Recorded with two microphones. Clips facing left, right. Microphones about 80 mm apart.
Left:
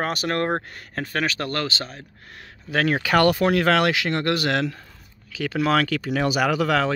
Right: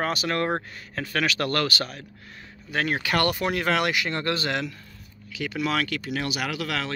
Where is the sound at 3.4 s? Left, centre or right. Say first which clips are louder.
Left 5 dB; left.